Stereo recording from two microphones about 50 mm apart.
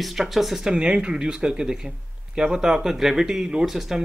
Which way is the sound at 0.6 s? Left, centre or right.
Centre.